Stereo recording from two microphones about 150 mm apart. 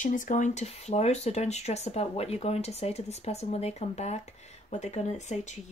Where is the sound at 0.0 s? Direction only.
60° left (ahead or behind).